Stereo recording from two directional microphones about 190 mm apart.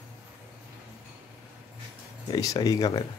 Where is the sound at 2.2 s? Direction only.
20° left (ahead or behind).